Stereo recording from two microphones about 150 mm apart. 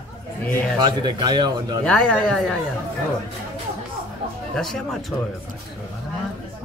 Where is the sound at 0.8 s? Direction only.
30° right (ahead or behind).